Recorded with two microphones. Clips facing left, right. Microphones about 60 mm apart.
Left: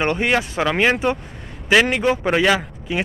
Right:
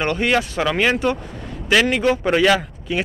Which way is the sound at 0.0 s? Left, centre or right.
Centre.